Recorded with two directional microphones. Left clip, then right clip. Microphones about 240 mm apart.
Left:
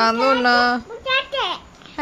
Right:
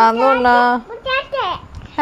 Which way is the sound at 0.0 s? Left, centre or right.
Centre.